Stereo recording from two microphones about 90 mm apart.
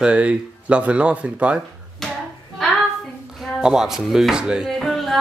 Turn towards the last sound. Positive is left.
turn(degrees=0)  # may be behind; listen again after turning